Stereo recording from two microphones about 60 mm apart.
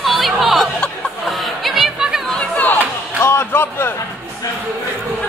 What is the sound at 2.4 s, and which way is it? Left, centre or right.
Chatter, left.